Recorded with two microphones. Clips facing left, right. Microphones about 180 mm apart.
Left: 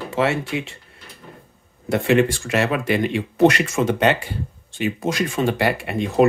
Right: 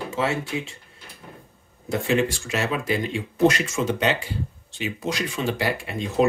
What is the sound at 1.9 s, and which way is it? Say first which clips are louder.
Speech: left 5 dB; 60° left (ahead or behind).